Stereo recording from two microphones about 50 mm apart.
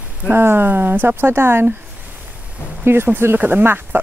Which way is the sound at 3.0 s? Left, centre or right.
Right.